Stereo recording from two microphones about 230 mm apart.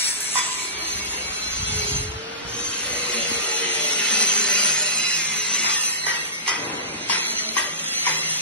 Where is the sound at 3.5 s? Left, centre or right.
Centre.